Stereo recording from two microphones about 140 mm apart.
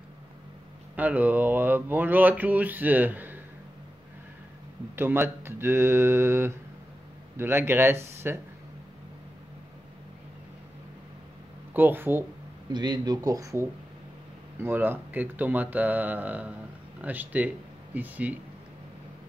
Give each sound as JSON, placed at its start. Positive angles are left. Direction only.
{"t": 0.9, "sound": "speech", "side_deg": -10}
{"t": 4.9, "sound": "speech", "side_deg": -15}
{"t": 11.7, "sound": "speech", "side_deg": -15}
{"t": 12.7, "sound": "speech", "side_deg": -30}